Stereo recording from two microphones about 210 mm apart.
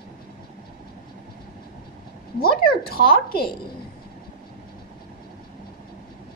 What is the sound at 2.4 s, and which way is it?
Speech, 45° left (ahead or behind).